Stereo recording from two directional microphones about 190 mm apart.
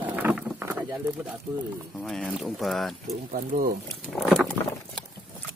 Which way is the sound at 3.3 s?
50° right (ahead or behind).